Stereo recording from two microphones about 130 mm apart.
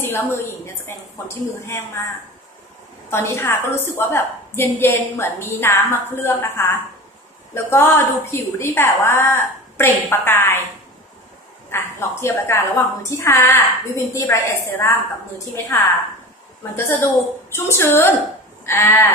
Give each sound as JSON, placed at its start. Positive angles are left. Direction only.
{"t": 0.0, "sound": "a woman's voice", "side_deg": 20}
{"t": 3.1, "sound": "a woman's voice", "side_deg": 20}
{"t": 11.7, "sound": "a woman's voice", "side_deg": 20}
{"t": 17.5, "sound": "a woman's voice", "side_deg": 20}